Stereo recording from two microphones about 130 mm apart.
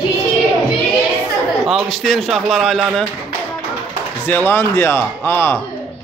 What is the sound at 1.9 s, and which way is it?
Speech, 5° left (ahead or behind).